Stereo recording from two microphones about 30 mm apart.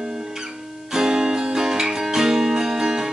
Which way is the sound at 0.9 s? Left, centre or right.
Right.